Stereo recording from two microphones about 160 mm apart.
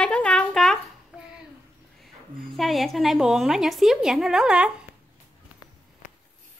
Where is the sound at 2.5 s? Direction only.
Centre (ahead or behind).